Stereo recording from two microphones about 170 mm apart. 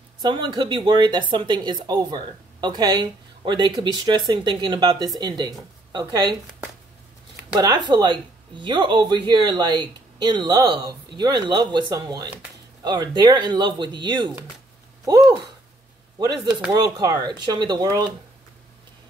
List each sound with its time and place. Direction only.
0.2 s speech: 25° right (ahead or behind)
7.5 s speech: 25° right (ahead or behind)